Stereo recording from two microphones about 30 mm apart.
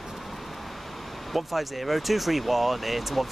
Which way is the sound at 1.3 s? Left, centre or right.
Centre.